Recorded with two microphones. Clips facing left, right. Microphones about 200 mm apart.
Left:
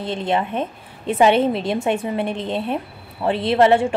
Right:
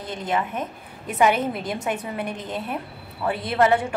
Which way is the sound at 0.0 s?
25° left (ahead or behind).